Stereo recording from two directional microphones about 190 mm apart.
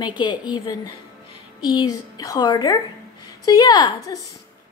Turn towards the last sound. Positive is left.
turn(degrees=20)  # may be behind; listen again after turning